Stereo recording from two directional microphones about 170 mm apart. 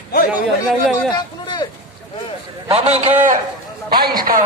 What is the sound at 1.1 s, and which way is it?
Speech, 25° left (ahead or behind).